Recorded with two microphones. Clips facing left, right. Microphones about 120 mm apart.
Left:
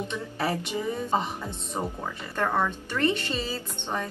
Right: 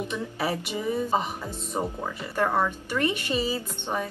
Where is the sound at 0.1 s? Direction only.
5° right (ahead or behind).